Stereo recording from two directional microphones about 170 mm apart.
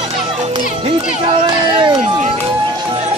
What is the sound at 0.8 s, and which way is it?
Speech, 30° right (ahead or behind).